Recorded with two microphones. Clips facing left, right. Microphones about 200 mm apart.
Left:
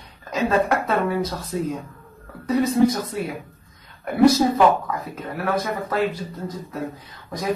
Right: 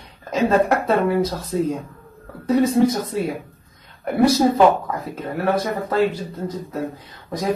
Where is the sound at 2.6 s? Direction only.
25° right (ahead or behind).